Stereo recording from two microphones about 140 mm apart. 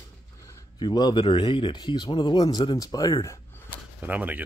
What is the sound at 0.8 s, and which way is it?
Speech, 30° left (ahead or behind).